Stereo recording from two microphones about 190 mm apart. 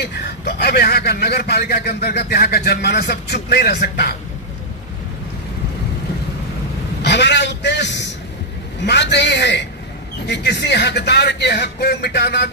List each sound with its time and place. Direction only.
0.0 s a man's voice: 60° left (ahead or behind)
7.0 s a man's voice: 65° left (ahead or behind)